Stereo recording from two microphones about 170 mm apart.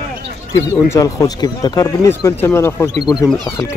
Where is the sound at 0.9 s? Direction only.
20° left (ahead or behind).